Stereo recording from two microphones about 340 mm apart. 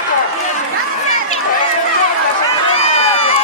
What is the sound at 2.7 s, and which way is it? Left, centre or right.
Run, centre.